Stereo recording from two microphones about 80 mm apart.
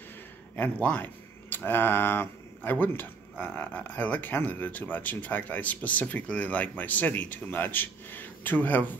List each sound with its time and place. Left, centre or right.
0.6 s speech: centre